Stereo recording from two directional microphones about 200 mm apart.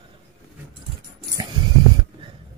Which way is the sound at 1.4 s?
20° right (ahead or behind).